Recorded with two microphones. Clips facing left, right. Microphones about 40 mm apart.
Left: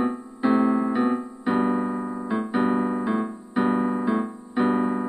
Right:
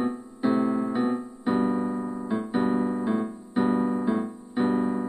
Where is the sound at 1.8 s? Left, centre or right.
Left.